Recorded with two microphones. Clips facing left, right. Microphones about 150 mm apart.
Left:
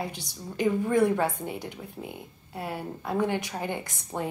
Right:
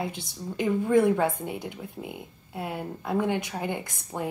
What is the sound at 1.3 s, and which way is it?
A woman's voice, 20° right (ahead or behind).